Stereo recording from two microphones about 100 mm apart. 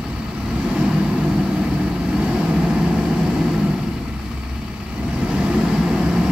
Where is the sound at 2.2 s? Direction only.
5° right (ahead or behind).